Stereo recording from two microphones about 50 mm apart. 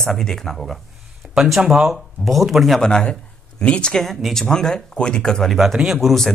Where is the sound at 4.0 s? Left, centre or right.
Centre.